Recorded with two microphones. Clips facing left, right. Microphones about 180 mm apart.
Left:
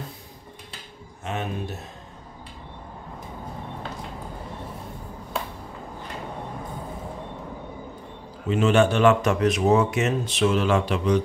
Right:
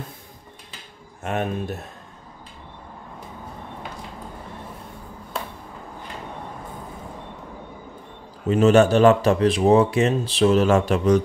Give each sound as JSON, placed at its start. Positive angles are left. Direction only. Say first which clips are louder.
{"t": 1.2, "sound": "speech", "louder": "right 4 dB", "side_deg": -55}
{"t": 8.5, "sound": "speech", "louder": "right 4 dB", "side_deg": -40}